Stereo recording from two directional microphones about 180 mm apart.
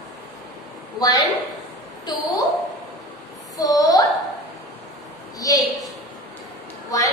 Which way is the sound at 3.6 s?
20° left (ahead or behind).